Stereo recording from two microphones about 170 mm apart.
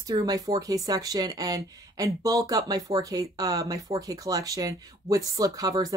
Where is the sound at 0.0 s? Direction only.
25° right (ahead or behind).